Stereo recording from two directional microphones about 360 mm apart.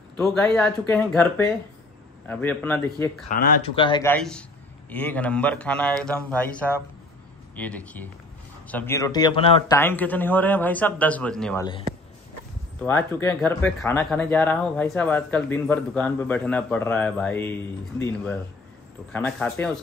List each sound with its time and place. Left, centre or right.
0.2 s speech: centre
3.3 s speech: left
3.8 s speech: centre
12.8 s speech: centre